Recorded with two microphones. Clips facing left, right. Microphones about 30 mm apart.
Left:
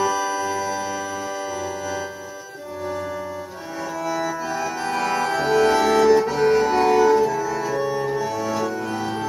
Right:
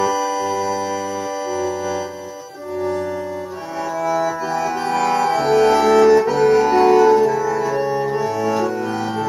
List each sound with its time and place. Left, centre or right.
0.0 s organ: centre
4.1 s music: centre
4.5 s music: centre
5.2 s music: centre
8.1 s music: right